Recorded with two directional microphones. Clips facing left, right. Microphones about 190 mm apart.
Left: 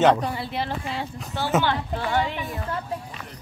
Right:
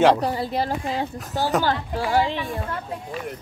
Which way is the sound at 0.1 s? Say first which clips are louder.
Right 2 dB; 35° right (ahead or behind).